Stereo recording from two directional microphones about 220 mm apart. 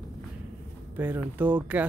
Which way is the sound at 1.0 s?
10° right (ahead or behind).